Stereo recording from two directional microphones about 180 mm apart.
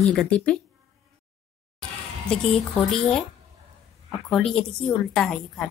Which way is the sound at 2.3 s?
5° left (ahead or behind).